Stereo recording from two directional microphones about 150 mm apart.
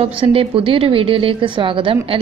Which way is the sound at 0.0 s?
40° right (ahead or behind).